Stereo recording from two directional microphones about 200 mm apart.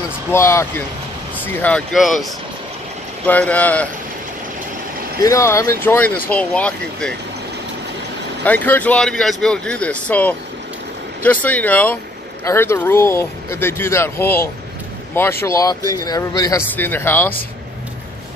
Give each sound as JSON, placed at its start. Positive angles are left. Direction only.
{"t": 0.3, "sound": "speech", "side_deg": 15}
{"t": 5.2, "sound": "speech", "side_deg": 15}
{"t": 8.5, "sound": "speech", "side_deg": 10}